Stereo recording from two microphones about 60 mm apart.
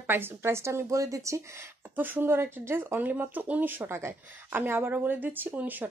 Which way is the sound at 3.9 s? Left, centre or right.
Right.